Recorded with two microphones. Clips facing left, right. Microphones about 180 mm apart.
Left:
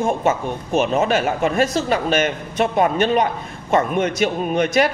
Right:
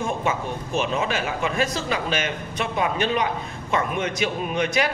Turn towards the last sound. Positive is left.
turn(degrees=45)  # may be behind; listen again after turning